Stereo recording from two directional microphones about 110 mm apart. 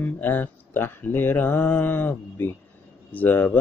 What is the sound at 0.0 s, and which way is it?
Mantra, 15° left (ahead or behind).